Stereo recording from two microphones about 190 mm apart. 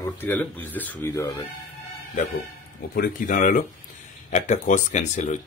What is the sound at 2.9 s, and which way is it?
Speech, 50° left (ahead or behind).